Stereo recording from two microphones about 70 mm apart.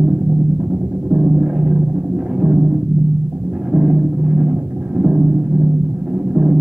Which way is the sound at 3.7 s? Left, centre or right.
Centre.